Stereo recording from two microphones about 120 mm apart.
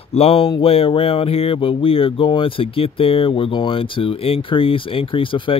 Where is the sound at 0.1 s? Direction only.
55° left (ahead or behind).